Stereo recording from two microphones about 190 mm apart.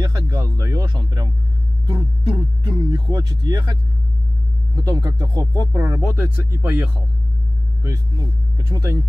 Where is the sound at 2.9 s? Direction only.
25° right (ahead or behind).